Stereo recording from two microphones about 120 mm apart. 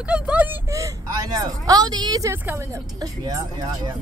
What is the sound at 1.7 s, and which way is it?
A woman's voice, 35° right (ahead or behind).